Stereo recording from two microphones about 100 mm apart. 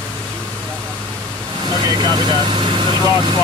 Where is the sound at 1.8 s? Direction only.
40° right (ahead or behind).